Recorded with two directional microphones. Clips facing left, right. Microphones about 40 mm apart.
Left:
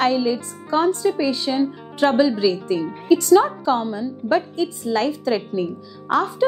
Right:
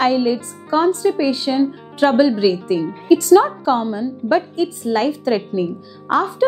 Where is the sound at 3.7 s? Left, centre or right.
Right.